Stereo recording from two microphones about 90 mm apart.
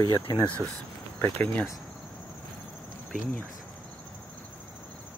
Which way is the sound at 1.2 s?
20° left (ahead or behind).